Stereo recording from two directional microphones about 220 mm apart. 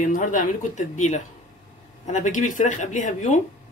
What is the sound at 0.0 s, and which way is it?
Speech, 35° left (ahead or behind).